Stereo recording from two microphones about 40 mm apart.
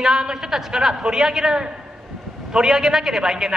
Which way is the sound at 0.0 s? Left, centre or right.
Centre.